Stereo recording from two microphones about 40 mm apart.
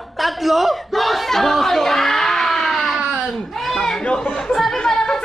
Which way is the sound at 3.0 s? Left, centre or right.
Right.